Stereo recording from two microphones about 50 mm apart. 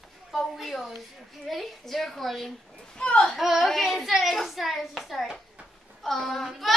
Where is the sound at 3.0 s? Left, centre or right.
Left.